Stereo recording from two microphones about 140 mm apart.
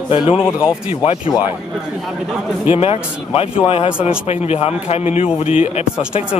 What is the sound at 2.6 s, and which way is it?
Speech, 45° left (ahead or behind).